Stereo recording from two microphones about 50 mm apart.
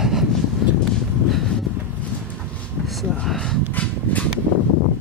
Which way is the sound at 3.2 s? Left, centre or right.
Centre.